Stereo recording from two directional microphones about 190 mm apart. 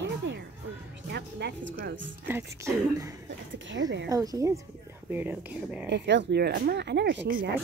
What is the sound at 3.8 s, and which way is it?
Speech, 80° right.